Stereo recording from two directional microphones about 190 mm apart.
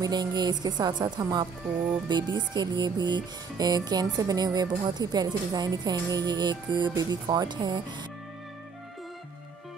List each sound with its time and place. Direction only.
0.0 s music: 20° right (ahead or behind)